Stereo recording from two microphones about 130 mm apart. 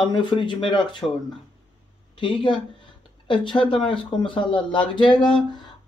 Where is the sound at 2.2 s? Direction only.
40° left (ahead or behind).